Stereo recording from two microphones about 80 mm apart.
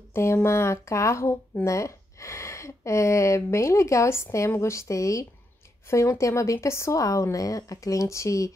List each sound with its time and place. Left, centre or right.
0.1 s speech: left